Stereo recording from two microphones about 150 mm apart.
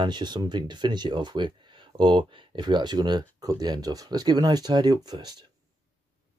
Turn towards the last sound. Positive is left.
turn(degrees=-25)  # may be behind; listen again after turning